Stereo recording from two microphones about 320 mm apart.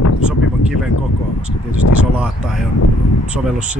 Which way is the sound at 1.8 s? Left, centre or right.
Left.